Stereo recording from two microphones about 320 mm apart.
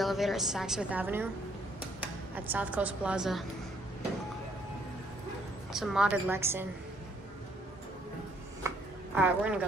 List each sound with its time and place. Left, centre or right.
0.0 s a woman's voice: centre
5.7 s a woman's voice: centre
8.6 s a sound: centre